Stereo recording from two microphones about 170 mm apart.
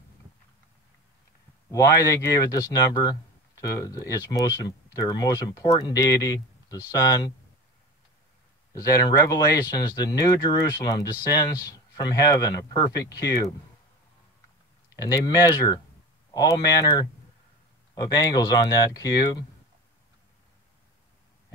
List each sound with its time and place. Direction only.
1.7 s speech: 20° left (ahead or behind)
8.7 s speech: 20° left (ahead or behind)
15.0 s speech: 20° left (ahead or behind)